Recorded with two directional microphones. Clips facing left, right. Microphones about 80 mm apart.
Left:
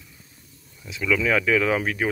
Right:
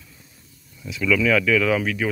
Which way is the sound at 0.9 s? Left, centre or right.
Left.